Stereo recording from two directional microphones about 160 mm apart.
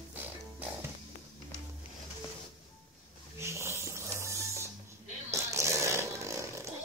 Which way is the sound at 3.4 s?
15° right (ahead or behind).